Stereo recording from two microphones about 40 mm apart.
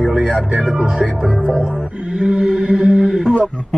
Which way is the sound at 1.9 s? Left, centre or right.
Right.